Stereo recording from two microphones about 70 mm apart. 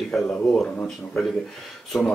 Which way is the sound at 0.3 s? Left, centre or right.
Centre.